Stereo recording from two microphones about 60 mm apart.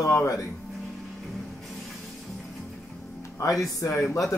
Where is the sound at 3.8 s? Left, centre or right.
Left.